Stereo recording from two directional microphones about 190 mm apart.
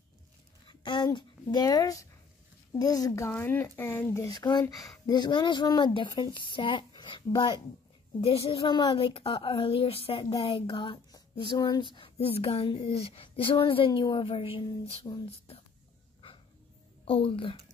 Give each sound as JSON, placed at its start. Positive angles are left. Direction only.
{"t": 0.7, "sound": "a woman's voice", "side_deg": 25}
{"t": 17.0, "sound": "speech", "side_deg": 30}